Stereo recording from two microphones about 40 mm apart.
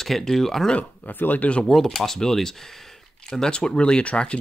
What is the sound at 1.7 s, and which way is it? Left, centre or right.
Speech, centre.